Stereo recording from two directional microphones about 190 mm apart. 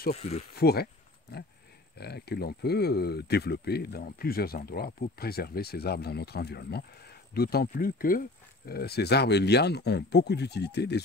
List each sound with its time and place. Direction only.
0.1 s speech: 35° left (ahead or behind)
0.6 s speech: 55° left (ahead or behind)
2.0 s speech: 60° left (ahead or behind)